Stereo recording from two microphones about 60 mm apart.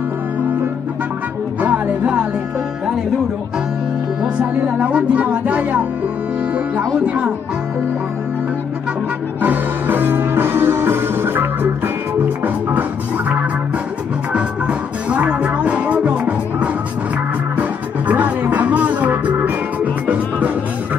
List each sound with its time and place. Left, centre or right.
1.6 s music: right
4.2 s speech: centre
7.1 s speech: right
9.4 s music: right
14.3 s music: right